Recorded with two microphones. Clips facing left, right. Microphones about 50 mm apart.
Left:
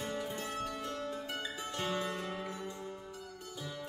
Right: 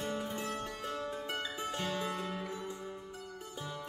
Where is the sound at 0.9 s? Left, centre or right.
Right.